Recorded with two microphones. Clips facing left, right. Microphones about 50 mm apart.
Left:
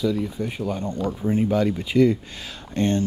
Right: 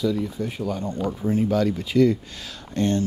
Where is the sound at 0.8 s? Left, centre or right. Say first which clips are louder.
Even; right.